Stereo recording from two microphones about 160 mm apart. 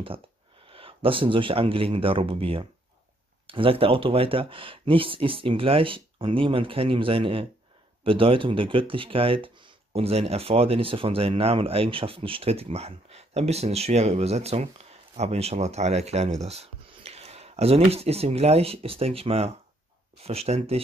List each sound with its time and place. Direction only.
0.7 s speech: 35° right (ahead or behind)